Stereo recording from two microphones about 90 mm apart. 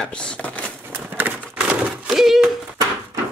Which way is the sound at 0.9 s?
20° right (ahead or behind).